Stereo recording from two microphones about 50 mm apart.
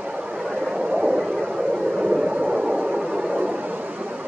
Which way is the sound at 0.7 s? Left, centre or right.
Centre.